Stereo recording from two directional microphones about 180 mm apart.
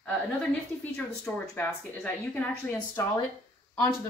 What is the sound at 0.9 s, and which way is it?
Speech, 5° left (ahead or behind).